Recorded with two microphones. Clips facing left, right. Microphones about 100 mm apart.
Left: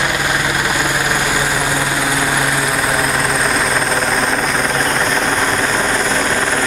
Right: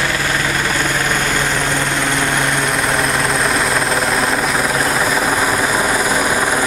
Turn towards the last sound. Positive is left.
turn(degrees=-10)  # may be behind; listen again after turning